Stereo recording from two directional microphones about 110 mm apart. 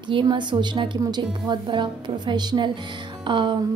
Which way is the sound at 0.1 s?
45° right (ahead or behind).